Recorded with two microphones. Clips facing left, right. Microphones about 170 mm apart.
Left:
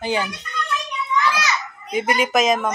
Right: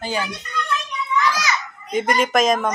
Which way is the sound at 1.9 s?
5° left (ahead or behind).